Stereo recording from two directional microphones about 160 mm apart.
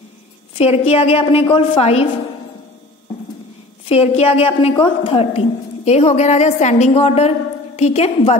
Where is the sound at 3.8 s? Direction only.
40° left (ahead or behind).